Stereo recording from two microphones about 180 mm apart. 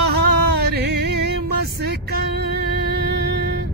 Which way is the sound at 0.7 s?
65° right (ahead or behind).